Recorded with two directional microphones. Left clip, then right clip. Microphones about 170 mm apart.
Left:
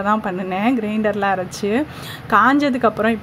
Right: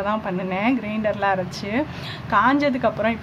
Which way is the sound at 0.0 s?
30° left (ahead or behind).